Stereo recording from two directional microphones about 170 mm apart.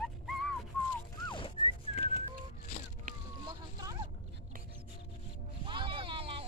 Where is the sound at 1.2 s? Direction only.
30° left (ahead or behind).